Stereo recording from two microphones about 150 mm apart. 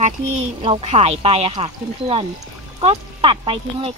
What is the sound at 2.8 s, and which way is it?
Speech, 45° right (ahead or behind).